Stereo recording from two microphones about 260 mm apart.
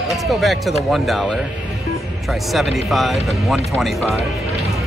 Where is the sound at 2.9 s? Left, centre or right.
Centre.